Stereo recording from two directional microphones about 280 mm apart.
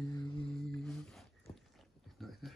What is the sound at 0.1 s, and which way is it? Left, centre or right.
Music, centre.